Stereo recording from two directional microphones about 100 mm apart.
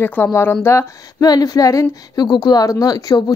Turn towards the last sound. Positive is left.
turn(degrees=40)  # may be behind; listen again after turning